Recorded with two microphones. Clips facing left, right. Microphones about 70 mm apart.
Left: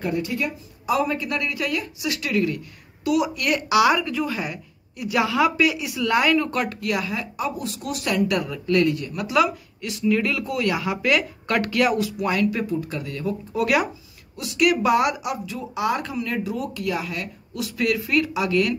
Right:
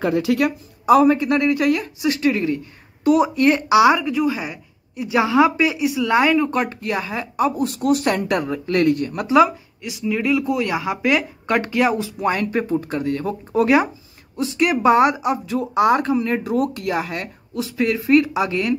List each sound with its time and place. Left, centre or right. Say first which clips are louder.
0.1 s speech: right 8 dB; right
0.8 s speech: right 9 dB; right
7.3 s speech: right 8 dB; right
8.8 s speech: right 5 dB; right
9.3 s speech: right 6 dB; right
16.5 s speech: right 6 dB; right
17.6 s speech: right 5 dB; right